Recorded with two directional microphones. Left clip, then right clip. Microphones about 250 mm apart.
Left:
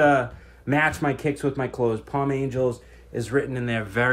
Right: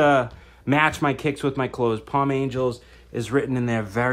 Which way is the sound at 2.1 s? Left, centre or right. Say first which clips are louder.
Right 2 dB; centre.